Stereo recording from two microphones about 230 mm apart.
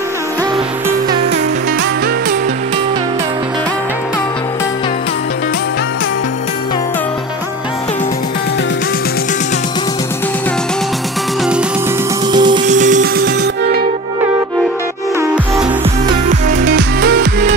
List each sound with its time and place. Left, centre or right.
12.3 s music: centre
12.6 s music: right
15.1 s music: centre
16.6 s music: right